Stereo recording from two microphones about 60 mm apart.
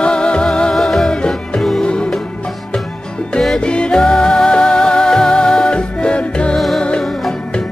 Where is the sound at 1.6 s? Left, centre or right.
Centre.